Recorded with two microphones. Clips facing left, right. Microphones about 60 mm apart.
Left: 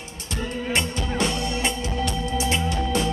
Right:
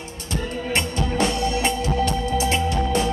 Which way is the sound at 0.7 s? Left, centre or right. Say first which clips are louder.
Right 3 dB; right.